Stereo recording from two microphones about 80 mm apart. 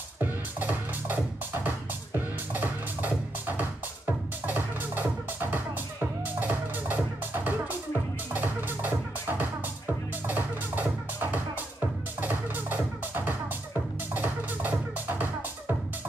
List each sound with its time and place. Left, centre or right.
0.2 s music: right